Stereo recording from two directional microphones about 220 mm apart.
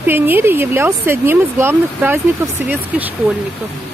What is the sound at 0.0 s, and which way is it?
Speech, 10° right (ahead or behind).